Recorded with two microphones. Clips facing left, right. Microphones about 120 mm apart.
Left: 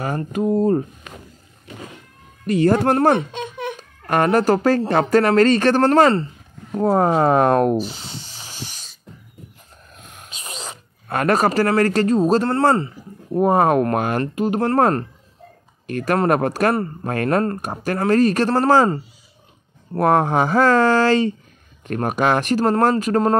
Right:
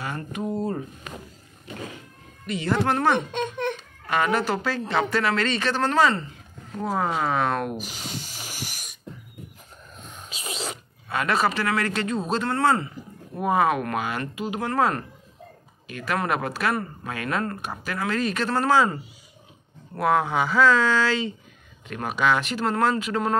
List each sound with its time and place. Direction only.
0.0 s speech: 40° left (ahead or behind)
2.4 s speech: 45° left (ahead or behind)
3.2 s speech: 10° left (ahead or behind)
4.0 s speech: 50° left (ahead or behind); by 8.1 s 35° left (ahead or behind)
11.1 s speech: 45° left (ahead or behind)